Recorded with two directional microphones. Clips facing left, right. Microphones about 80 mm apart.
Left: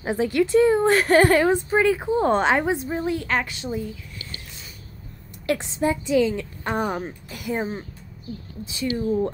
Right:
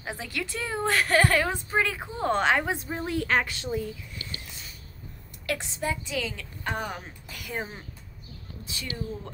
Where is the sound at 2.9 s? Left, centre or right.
Centre.